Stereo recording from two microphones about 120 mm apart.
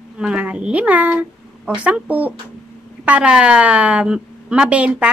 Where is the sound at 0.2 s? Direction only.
10° right (ahead or behind).